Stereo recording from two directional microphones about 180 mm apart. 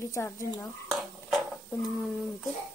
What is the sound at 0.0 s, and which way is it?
Speech, 15° left (ahead or behind).